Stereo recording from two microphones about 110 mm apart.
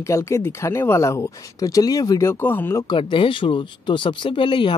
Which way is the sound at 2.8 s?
45° left (ahead or behind).